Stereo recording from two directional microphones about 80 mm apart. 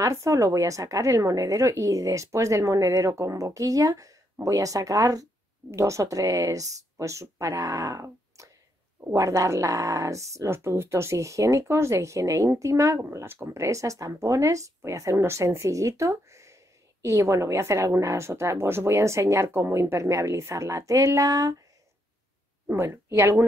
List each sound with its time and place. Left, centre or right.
0.1 s a woman's voice: right
22.8 s speech: right